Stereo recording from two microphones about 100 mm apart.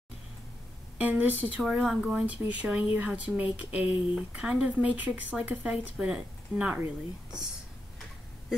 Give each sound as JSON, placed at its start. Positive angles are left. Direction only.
{"t": 0.9, "sound": "speech", "side_deg": -15}
{"t": 1.6, "sound": "speech", "side_deg": -5}